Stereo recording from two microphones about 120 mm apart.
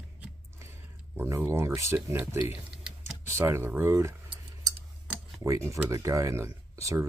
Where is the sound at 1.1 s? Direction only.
20° right (ahead or behind).